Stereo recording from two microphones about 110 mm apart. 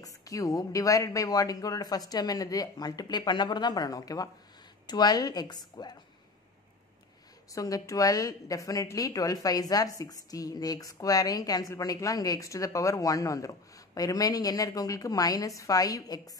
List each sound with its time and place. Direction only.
0.0 s a woman's voice: 30° left (ahead or behind)
7.5 s a woman's voice: 30° left (ahead or behind)